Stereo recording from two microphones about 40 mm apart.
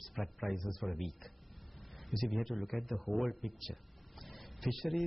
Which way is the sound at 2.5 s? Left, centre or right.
Centre.